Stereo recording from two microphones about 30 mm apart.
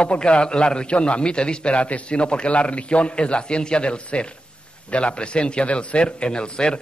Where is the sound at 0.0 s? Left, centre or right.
Left.